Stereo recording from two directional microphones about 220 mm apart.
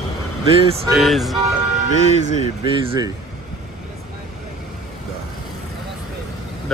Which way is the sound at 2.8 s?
20° right (ahead or behind).